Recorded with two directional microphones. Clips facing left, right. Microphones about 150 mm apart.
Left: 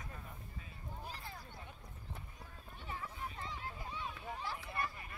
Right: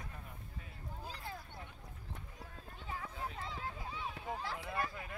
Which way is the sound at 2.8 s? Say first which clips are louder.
Right 2 dB; 90° right.